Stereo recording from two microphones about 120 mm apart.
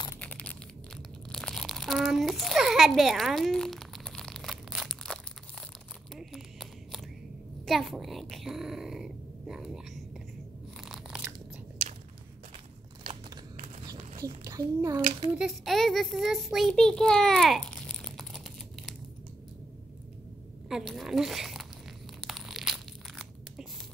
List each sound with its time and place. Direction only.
0.2 s crushing: 10° left (ahead or behind)
1.3 s crumpling: centre (ahead or behind)
6.1 s a sound: 5° right (ahead or behind)
7.6 s speech: centre (ahead or behind)
10.9 s biting: 5° right (ahead or behind)
14.4 s a child's voice: 30° right (ahead or behind)
15.3 s a child's voice: centre (ahead or behind)
20.6 s a woman's voice: centre (ahead or behind)
22.2 s tearing: centre (ahead or behind)